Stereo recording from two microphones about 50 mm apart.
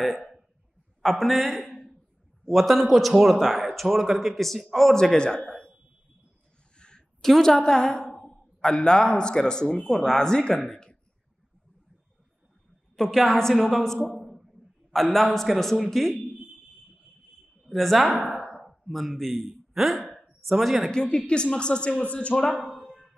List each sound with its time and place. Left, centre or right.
0.0 s a man's voice: centre
5.1 s speech: centre
6.8 s a sound: centre
7.2 s a man's voice: centre
8.1 s a sound: centre
8.5 s speech: centre
10.7 s throat clearing: centre
12.9 s a man's voice: centre
14.1 s a sound: centre
15.3 s a man's voice: centre
17.6 s a man's voice: centre
20.2 s a sound: centre
20.9 s speech: centre
22.6 s tap: right